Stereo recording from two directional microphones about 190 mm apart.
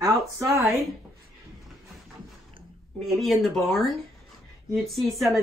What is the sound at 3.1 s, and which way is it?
A woman's voice, centre (ahead or behind).